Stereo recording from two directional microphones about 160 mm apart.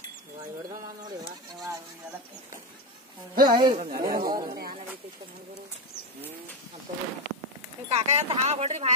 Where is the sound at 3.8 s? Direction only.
65° right (ahead or behind).